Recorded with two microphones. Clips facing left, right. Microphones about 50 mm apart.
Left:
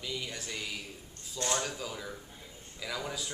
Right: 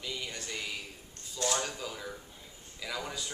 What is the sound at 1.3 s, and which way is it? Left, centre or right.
Speech, left.